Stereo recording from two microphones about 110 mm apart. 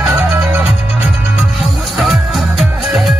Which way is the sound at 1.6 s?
Centre (ahead or behind).